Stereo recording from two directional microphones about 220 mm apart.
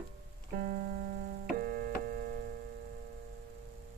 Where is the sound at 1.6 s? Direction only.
45° right (ahead or behind).